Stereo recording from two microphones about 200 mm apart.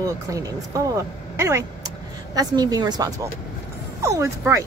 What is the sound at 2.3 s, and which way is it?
Speech, 20° right (ahead or behind).